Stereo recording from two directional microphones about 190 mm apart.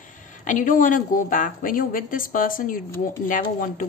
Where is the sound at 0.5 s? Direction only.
45° left (ahead or behind).